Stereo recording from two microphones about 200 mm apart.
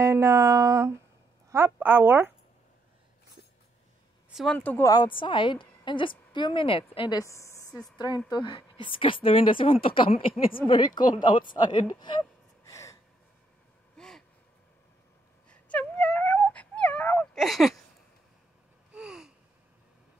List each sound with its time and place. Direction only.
0.0 s a sound: 15° right (ahead or behind)
4.3 s speech: centre (ahead or behind)
4.9 s a woman's voice: 25° left (ahead or behind)
13.9 s gasp: 5° left (ahead or behind)
15.5 s dog: 5° left (ahead or behind)
18.9 s gasp: 5° right (ahead or behind)